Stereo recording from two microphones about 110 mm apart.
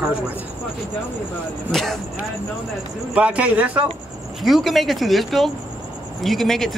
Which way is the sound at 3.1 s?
10° right (ahead or behind).